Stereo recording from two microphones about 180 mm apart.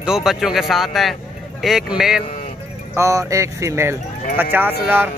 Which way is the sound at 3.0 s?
15° right (ahead or behind).